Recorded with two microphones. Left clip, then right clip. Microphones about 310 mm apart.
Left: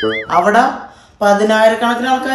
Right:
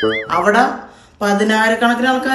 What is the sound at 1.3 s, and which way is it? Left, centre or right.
Speech, left.